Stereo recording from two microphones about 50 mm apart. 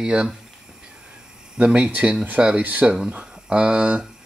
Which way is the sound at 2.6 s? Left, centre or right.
Right.